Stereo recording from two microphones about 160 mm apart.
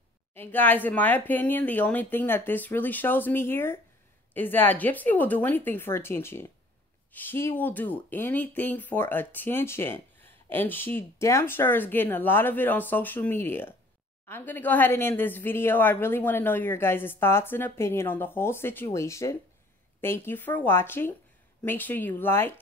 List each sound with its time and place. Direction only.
0.3 s speech: 10° left (ahead or behind)